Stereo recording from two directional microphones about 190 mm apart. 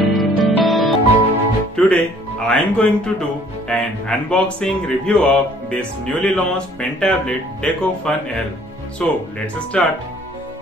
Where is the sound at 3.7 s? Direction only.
5° left (ahead or behind).